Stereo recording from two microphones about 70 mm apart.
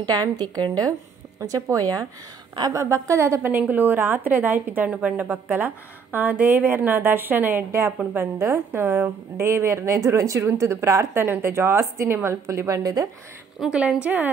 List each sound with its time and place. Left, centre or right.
0.0 s a woman's voice: right
1.4 s a woman's voice: right
2.7 s a woman's voice: right
3.5 s a woman's voice: right
13.7 s a woman's voice: centre